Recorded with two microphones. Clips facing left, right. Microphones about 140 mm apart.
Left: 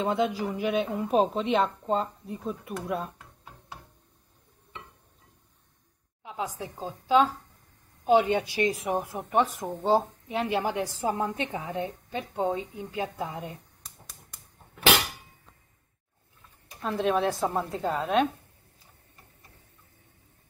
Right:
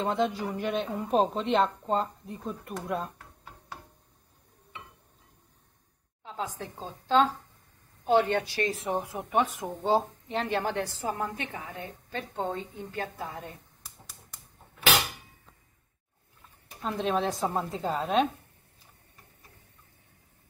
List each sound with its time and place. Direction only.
0.0 s a woman's voice: 5° left (ahead or behind)
6.2 s a woman's voice: 10° left (ahead or behind)
9.2 s speech: 10° right (ahead or behind)
9.9 s a woman's voice: 5° left (ahead or behind)
11.1 s a woman's voice: 25° left (ahead or behind)
16.8 s a woman's voice: centre (ahead or behind)